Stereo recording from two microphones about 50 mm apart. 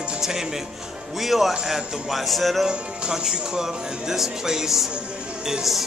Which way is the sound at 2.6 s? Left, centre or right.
Centre.